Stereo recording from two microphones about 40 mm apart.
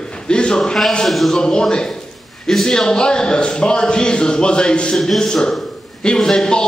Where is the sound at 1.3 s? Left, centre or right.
Centre.